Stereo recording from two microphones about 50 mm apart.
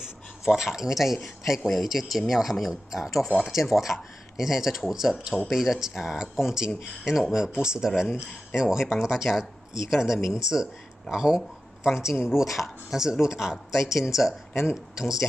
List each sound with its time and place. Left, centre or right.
0.0 s speech: centre
7.9 s speech: centre
14.5 s a man's voice: left
15.0 s speech: centre